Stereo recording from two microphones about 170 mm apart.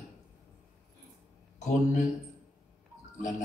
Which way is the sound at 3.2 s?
45° left (ahead or behind).